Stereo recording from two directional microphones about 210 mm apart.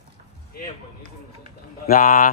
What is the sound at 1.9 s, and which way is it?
Speech, 40° left (ahead or behind).